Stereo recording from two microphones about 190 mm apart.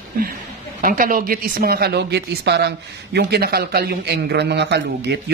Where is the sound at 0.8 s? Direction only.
45° right (ahead or behind).